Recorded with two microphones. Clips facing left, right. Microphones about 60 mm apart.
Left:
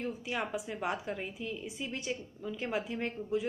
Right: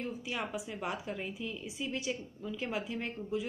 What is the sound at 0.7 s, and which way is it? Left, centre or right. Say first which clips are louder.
A woman's voice: left 2 dB; left.